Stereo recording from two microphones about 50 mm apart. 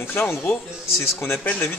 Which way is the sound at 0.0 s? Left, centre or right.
Left.